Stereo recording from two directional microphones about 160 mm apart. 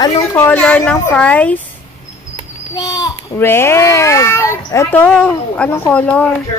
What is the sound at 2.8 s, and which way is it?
Speech, 25° left (ahead or behind).